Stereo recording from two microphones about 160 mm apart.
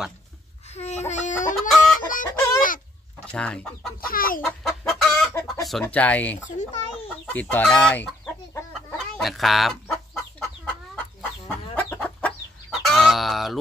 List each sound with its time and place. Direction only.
0.7 s a sound: 45° left (ahead or behind)
1.5 s chicken: centre (ahead or behind)
2.0 s chicken: 60° left (ahead or behind)
3.3 s speech: 5° left (ahead or behind)
4.0 s chicken: 65° left (ahead or behind)
4.4 s chicken: centre (ahead or behind)
5.3 s chicken: 15° left (ahead or behind)
5.7 s speech: 5° left (ahead or behind)
8.7 s chicken: centre (ahead or behind)